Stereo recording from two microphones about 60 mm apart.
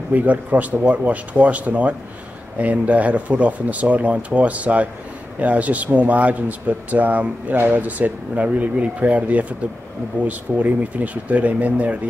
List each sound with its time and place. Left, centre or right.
0.1 s speech: right